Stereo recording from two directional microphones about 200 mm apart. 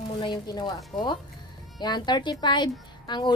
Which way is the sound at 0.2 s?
20° left (ahead or behind).